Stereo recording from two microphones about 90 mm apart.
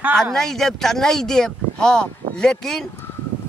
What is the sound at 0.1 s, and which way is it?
Speech, 5° left (ahead or behind).